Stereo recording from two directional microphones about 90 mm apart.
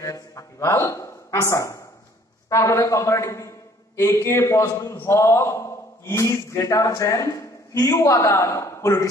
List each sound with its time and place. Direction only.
0.0 s a man's voice: 40° left (ahead or behind)